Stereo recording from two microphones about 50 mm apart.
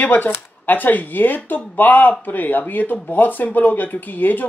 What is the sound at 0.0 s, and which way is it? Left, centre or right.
Speech, left.